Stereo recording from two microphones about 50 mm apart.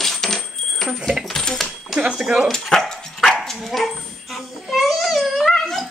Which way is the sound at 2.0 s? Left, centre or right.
Centre.